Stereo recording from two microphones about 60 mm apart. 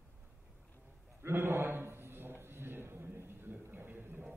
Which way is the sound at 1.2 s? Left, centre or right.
Right.